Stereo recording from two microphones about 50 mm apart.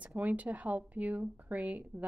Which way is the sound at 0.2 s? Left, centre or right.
Right.